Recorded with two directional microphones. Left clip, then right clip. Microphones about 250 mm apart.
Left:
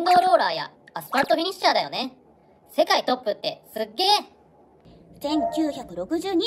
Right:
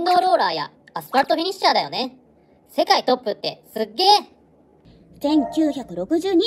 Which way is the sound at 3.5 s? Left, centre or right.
Right.